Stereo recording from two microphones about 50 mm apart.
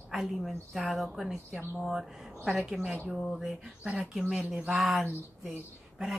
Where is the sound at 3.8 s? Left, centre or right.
Right.